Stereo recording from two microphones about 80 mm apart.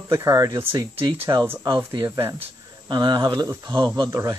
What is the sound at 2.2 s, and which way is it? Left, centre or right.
Speech, right.